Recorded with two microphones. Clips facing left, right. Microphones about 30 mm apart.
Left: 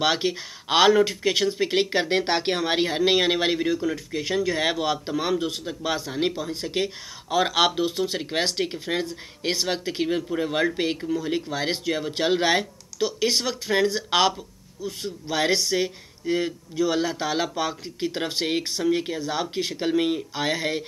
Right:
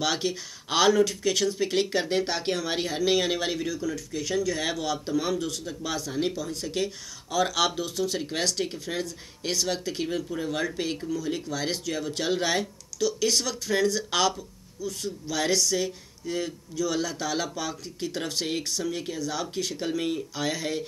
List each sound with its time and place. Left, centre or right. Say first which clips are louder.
0.0 s speech: left 4 dB; left